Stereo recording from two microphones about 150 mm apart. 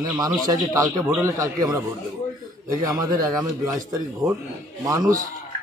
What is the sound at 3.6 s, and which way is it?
Speech, 25° right (ahead or behind).